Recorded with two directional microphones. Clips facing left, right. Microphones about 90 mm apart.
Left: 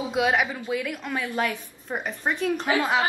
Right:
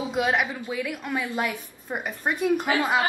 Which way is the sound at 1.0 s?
5° right (ahead or behind).